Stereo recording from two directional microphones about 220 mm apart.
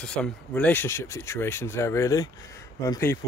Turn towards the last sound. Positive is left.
turn(degrees=15)  # may be behind; listen again after turning